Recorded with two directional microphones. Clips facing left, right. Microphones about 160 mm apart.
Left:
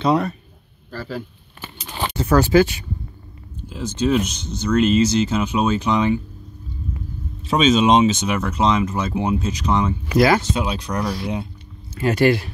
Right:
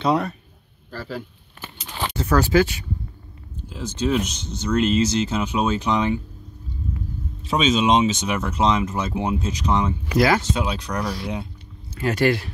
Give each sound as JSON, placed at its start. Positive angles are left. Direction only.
{"t": 0.0, "sound": "speech", "side_deg": 0}
{"t": 2.0, "sound": "speech", "side_deg": 20}
{"t": 3.8, "sound": "speech", "side_deg": 5}
{"t": 7.5, "sound": "speech", "side_deg": 40}
{"t": 8.4, "sound": "speech", "side_deg": 0}